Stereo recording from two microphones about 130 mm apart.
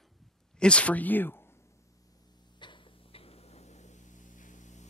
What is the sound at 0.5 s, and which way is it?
Speech, 10° left (ahead or behind).